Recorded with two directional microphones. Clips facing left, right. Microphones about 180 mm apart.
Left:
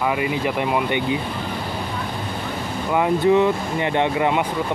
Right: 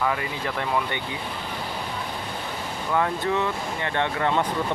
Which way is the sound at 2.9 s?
15° left (ahead or behind).